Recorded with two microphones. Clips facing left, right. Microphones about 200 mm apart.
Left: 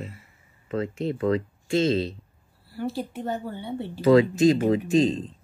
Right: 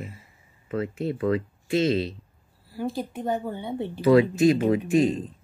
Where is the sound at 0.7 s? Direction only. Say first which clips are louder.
Even; 25° left (ahead or behind).